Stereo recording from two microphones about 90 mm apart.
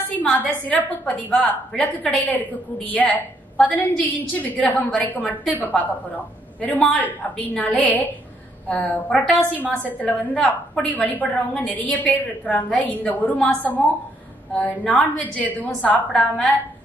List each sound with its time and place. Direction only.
0.1 s a woman's voice: 15° left (ahead or behind)